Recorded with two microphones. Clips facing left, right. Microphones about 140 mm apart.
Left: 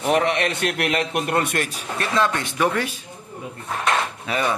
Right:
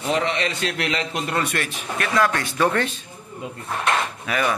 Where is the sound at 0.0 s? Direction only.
60° left (ahead or behind).